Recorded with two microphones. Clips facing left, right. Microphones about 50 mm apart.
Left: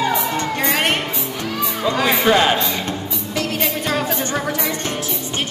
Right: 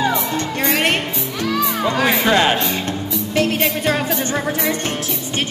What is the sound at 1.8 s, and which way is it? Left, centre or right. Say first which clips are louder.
Music: left 3 dB; right.